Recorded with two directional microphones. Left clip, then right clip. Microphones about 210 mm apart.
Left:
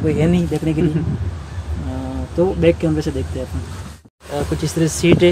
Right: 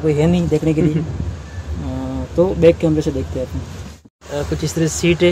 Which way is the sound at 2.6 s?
5° right (ahead or behind).